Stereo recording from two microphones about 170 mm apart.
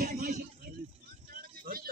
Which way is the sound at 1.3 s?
60° right (ahead or behind).